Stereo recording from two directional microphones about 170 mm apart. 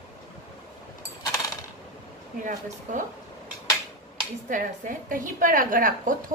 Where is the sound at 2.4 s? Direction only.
50° right (ahead or behind).